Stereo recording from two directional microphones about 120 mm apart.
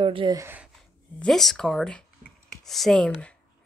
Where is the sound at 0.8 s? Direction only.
5° left (ahead or behind).